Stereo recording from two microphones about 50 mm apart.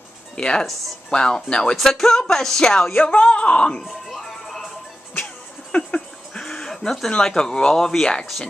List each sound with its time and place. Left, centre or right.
0.4 s speech: centre
1.8 s speech: centre
3.0 s speech: left
3.8 s music: centre
5.7 s a sound: left
5.9 s a sound: centre
7.1 s speech: centre